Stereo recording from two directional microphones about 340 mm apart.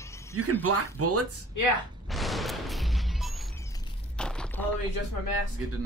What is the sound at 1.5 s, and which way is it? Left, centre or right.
Speech, left.